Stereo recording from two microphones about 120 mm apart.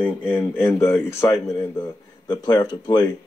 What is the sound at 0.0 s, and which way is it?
Speech, 10° left (ahead or behind).